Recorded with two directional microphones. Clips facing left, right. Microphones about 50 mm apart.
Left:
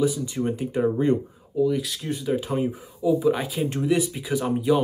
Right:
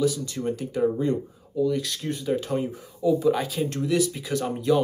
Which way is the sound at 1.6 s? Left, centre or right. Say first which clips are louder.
Left 2 dB; centre.